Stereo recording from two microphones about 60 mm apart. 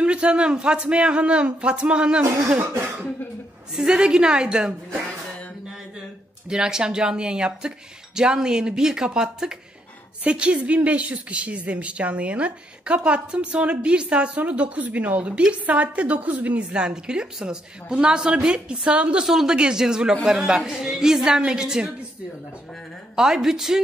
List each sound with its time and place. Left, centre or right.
0.0 s speech: centre
3.7 s speech: centre
6.5 s a woman's voice: centre
19.2 s speech: centre
23.1 s speech: centre